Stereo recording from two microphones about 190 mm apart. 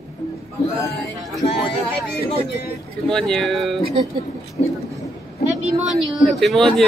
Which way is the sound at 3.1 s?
Centre (ahead or behind).